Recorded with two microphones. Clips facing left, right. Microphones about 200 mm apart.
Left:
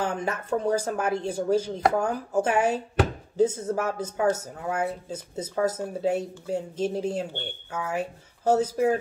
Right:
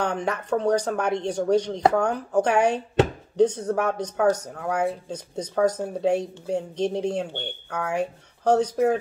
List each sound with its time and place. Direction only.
0.0 s speech: 5° left (ahead or behind)